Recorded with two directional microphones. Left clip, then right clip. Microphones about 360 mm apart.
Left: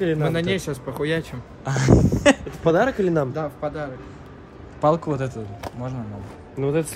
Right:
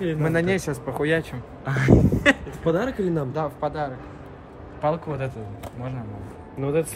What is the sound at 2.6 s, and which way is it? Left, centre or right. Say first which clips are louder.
Speech: left 5 dB; centre.